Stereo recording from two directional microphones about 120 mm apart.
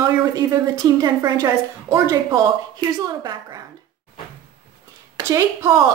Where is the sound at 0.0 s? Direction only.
30° right (ahead or behind).